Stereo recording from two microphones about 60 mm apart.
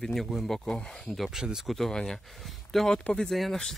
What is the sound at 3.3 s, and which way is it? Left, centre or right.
Speech, centre.